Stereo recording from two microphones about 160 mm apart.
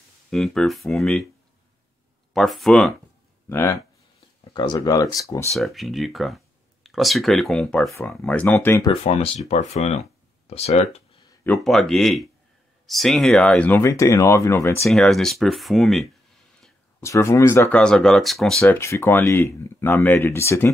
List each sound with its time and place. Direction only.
0.3 s speech: centre (ahead or behind)
2.3 s speech: centre (ahead or behind)
3.4 s speech: 15° left (ahead or behind)
4.6 s speech: 25° left (ahead or behind)
5.5 s speech: centre (ahead or behind); by 8.9 s 20° left (ahead or behind)
9.0 s speech: 40° left (ahead or behind)
11.4 s speech: 5° left (ahead or behind)
14.9 s speech: centre (ahead or behind)
17.0 s speech: 15° left (ahead or behind); by 18.6 s centre (ahead or behind)
18.6 s speech: 15° left (ahead or behind)